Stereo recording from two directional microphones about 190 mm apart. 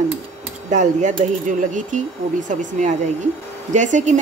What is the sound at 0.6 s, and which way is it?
A woman's voice, 40° right (ahead or behind).